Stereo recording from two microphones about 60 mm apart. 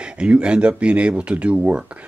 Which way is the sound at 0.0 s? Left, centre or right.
Centre.